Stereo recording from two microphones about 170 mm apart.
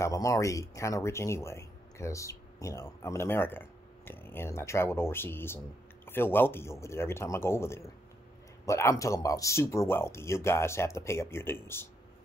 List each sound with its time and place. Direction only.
0.0 s speech: 20° left (ahead or behind)